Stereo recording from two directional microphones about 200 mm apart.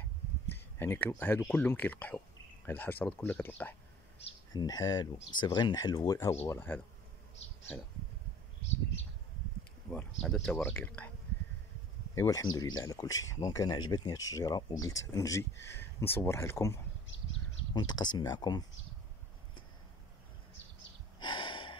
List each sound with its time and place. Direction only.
0.7 s speech: 10° left (ahead or behind)
4.5 s speech: 20° left (ahead or behind)
9.8 s speech: 5° left (ahead or behind)
12.2 s speech: 15° left (ahead or behind)
21.2 s gasp: 25° left (ahead or behind)